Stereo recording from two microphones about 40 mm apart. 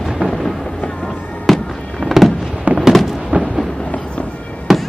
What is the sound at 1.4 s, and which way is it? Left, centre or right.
Fireworks, centre.